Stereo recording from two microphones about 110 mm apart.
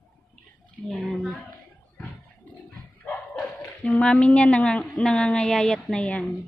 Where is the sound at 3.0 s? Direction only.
10° left (ahead or behind).